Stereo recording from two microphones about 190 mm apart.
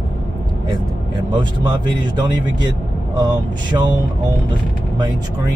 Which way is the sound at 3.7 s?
20° right (ahead or behind).